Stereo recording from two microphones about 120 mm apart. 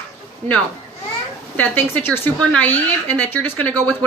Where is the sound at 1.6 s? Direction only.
15° left (ahead or behind).